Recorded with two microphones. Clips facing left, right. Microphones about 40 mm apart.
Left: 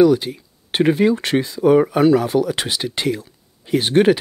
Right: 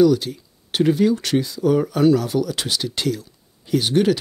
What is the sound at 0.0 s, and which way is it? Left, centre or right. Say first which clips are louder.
Speech: left 2 dB; left.